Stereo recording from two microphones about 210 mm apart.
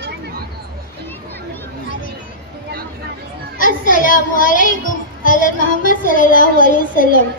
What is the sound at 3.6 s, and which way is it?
A woman's voice, 40° left (ahead or behind).